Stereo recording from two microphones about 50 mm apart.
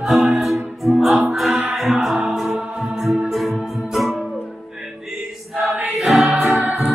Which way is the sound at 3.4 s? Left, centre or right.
Centre.